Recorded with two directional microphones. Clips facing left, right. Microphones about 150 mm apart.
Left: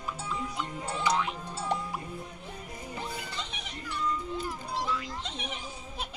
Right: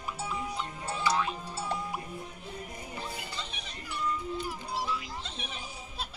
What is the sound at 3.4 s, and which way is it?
Music, 20° left (ahead or behind).